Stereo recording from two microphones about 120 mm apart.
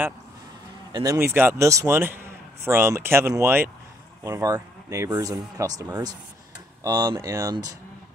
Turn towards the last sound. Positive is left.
turn(degrees=-30)  # may be behind; listen again after turning